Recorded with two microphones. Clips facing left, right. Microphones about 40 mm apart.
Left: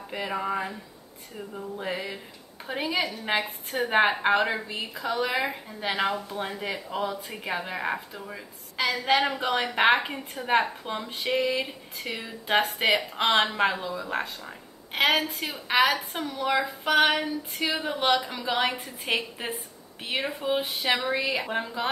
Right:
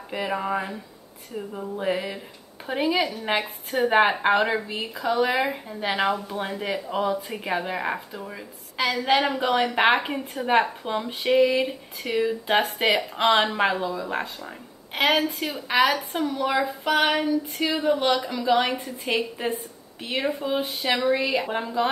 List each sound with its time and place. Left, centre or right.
0.1 s speech: centre
1.8 s speech: centre
15.0 s speech: centre
17.9 s a woman's voice: centre
18.4 s speech: centre